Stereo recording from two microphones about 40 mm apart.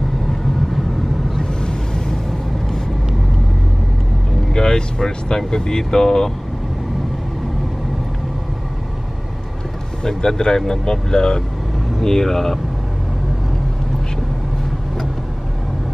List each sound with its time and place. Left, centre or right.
1.3 s a sound: centre
4.5 s speech: centre
10.0 s speech: centre